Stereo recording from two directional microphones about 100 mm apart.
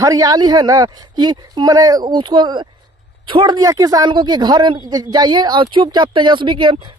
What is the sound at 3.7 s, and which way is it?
A woman's voice, 40° right (ahead or behind).